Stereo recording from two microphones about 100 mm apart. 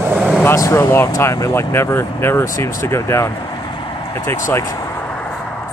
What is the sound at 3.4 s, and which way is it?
Vehicle, 45° left (ahead or behind).